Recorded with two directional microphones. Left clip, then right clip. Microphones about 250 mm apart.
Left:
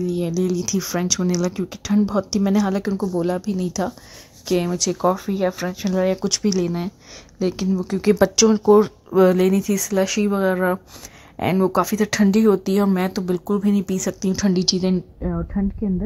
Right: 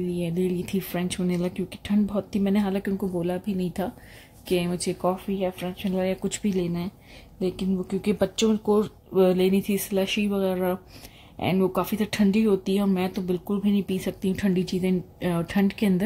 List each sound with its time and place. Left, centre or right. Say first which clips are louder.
0.0 s speech: left 5 dB; centre
15.2 s speech: right 4 dB; centre